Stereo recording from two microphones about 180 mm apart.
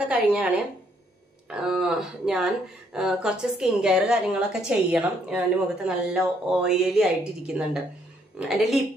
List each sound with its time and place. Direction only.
0.1 s speech: 10° right (ahead or behind)